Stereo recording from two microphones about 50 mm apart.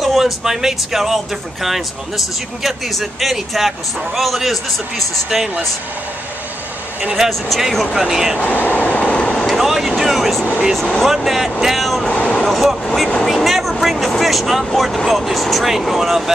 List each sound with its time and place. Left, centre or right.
0.0 s speech: centre
7.2 s speech: centre
8.4 s vehicle: left
9.5 s speech: centre
12.1 s a sound: left
12.4 s speech: centre